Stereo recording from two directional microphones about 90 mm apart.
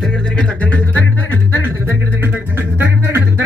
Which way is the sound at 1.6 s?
20° right (ahead or behind).